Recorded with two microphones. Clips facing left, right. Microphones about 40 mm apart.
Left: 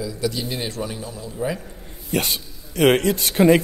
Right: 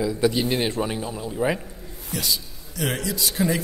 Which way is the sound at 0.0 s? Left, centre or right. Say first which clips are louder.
Right 4 dB; right.